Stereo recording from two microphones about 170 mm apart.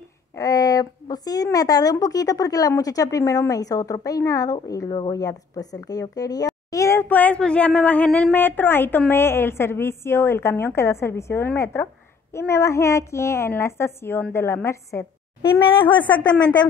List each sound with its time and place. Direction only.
0.4 s a woman's voice: 20° left (ahead or behind)
15.8 s speech: 30° left (ahead or behind)